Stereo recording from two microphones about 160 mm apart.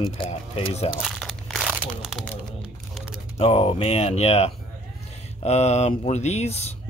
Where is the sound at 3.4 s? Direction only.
35° left (ahead or behind).